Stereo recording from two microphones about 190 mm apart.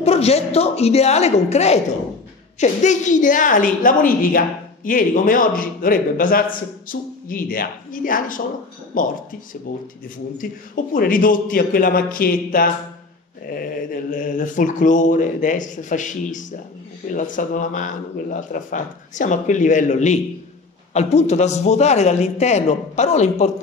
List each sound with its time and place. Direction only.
0.0 s a man's voice: 35° left (ahead or behind)